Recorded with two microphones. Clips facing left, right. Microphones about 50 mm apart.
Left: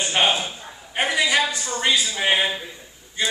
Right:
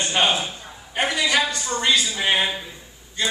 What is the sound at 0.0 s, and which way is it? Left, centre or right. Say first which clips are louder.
A man's voice: even; centre.